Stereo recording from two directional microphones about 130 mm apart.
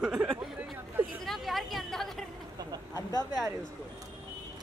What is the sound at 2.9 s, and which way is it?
Speech, 30° left (ahead or behind).